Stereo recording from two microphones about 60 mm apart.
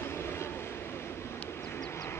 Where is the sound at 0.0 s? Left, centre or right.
Left.